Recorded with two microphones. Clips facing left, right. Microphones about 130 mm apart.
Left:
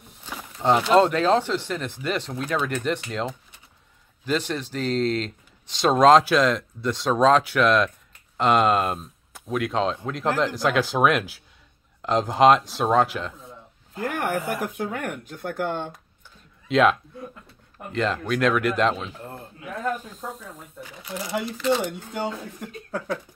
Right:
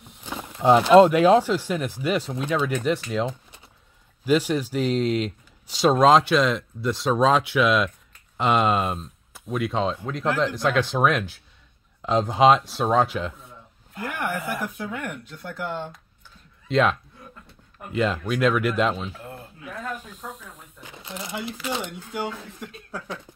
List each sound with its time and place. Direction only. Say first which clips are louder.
0.6 s speech: right 4 dB; 15° right (ahead or behind)
4.3 s speech: right 5 dB; 10° right (ahead or behind)
14.1 s speech: left 2 dB; 45° left (ahead or behind)
16.6 s a man's voice: left 2 dB; centre (ahead or behind)
17.9 s speech: right 1 dB; 5° right (ahead or behind)
21.5 s speech: left 9 dB; 10° right (ahead or behind)
22.8 s speech: left 7 dB; 55° left (ahead or behind)